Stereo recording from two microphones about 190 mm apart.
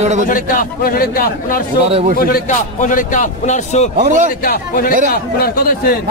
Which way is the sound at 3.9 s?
40° right (ahead or behind).